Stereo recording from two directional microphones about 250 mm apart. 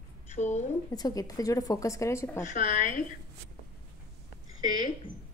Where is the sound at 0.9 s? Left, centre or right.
Centre.